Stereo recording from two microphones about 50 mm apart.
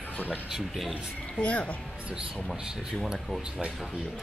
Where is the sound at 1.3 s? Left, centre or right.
Left.